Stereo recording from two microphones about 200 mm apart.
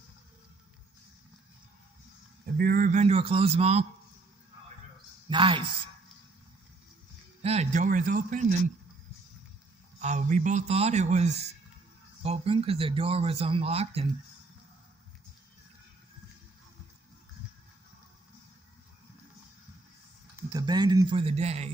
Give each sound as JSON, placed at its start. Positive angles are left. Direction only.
{"t": 2.4, "sound": "a man's voice", "side_deg": -45}
{"t": 5.3, "sound": "speech", "side_deg": -25}
{"t": 7.4, "sound": "a man's voice", "side_deg": -35}
{"t": 9.9, "sound": "a man's voice", "side_deg": -35}
{"t": 20.3, "sound": "speech", "side_deg": -20}